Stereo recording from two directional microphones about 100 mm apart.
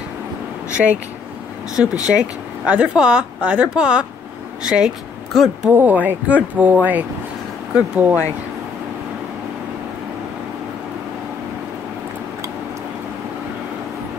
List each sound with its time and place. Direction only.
0.8 s speech: centre (ahead or behind)
2.0 s speech: 10° right (ahead or behind)
5.7 s speech: 15° right (ahead or behind)